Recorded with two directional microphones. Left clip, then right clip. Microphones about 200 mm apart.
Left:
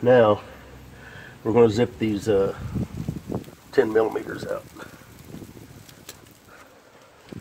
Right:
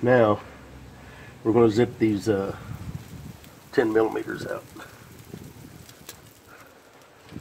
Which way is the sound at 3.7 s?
40° left (ahead or behind).